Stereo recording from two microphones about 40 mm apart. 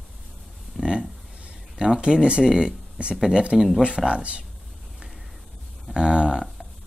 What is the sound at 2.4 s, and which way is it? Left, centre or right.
Speech, centre.